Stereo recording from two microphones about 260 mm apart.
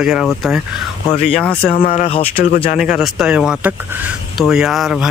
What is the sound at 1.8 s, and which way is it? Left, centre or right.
Speech, left.